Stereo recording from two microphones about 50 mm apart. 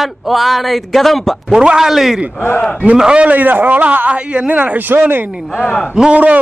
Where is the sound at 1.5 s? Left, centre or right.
Centre.